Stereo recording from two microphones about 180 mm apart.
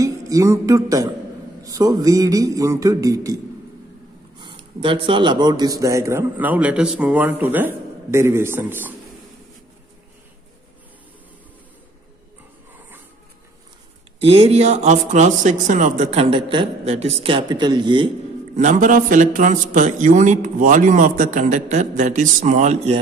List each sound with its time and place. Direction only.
0.0 s a sound: 20° right (ahead or behind)
1.6 s a man's voice: 20° right (ahead or behind)
4.4 s speech: 25° right (ahead or behind); by 8.9 s 10° right (ahead or behind)
14.2 s speech: 30° right (ahead or behind)
18.6 s a man's voice: 45° right (ahead or behind)